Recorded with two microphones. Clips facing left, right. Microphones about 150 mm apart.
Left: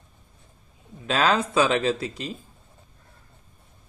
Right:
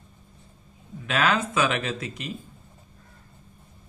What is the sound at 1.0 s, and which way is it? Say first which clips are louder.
Speech: left 2 dB; 30° left (ahead or behind).